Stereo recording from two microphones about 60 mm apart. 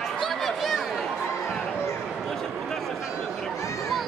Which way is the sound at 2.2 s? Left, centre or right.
Centre.